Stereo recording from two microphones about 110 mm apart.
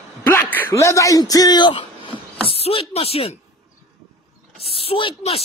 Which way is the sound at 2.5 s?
55° left (ahead or behind).